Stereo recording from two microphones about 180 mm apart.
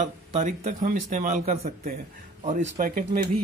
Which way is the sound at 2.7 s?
50° right (ahead or behind).